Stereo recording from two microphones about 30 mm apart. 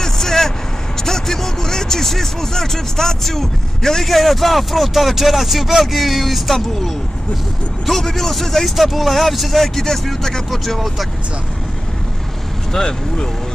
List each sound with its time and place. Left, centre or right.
0.0 s vehicle: centre
0.9 s speech: centre
7.8 s speech: centre
10.5 s speech: centre
12.7 s speech: left